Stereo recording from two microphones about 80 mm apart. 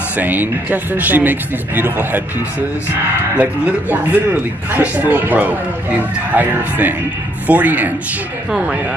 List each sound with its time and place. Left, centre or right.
0.2 s a man's voice: right
3.3 s a man's voice: right
8.5 s speech: centre